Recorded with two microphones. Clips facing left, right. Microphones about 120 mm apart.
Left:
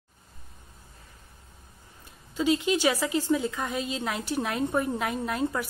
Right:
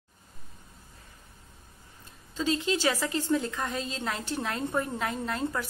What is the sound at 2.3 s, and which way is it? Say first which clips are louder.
A woman's voice: left 3 dB; 15° left (ahead or behind).